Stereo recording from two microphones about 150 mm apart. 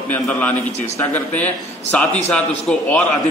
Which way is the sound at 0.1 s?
10° left (ahead or behind).